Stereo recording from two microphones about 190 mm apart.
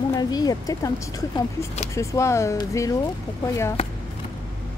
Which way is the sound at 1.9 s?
15° left (ahead or behind).